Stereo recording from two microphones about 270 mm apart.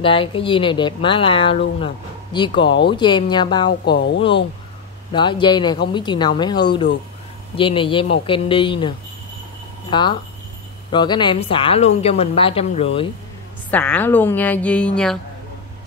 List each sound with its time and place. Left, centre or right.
0.0 s a woman's voice: centre
3.8 s speech: left
5.1 s a woman's voice: centre
13.7 s a woman's voice: centre